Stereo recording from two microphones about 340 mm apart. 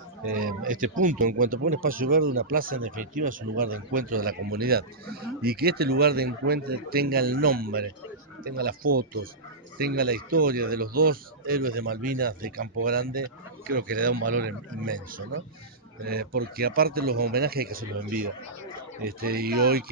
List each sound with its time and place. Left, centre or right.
0.4 s speech: right
16.1 s speech: right